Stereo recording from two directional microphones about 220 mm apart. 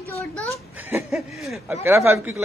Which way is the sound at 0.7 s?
10° right (ahead or behind).